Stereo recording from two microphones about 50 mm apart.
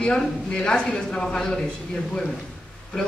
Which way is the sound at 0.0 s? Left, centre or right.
Centre.